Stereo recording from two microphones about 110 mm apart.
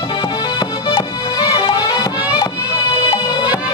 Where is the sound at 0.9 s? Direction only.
40° left (ahead or behind).